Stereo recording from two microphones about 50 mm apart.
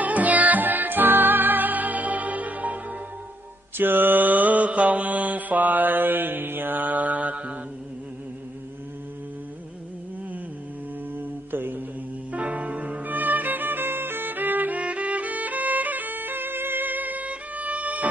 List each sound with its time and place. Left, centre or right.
0.0 s music: right
3.7 s mantra: right
11.1 s mantra: right
12.3 s music: right